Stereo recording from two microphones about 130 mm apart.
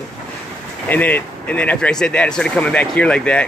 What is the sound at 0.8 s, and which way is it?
Speech, 15° left (ahead or behind).